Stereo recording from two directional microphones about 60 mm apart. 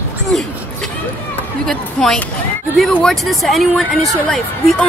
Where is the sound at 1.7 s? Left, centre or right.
Centre.